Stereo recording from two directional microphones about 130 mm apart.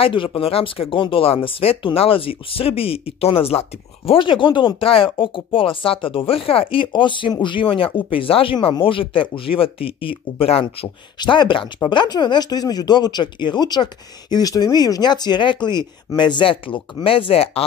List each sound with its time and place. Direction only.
0.0 s speech: 45° left (ahead or behind)